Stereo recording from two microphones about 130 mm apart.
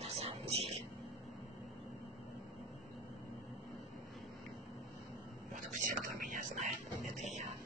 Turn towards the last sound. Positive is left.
turn(degrees=-75)  # may be behind; listen again after turning